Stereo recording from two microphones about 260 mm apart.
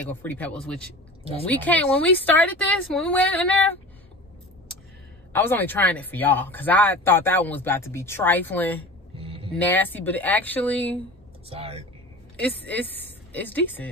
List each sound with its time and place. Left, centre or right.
0.0 s speech: centre
5.3 s speech: centre
9.1 s a sound: right
9.6 s speech: centre
11.4 s speech: right
12.6 s a woman's voice: centre